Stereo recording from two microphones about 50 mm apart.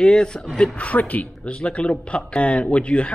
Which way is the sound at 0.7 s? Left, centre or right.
Left.